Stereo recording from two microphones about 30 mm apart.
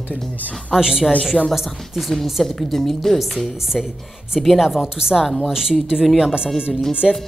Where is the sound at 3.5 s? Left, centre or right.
Centre.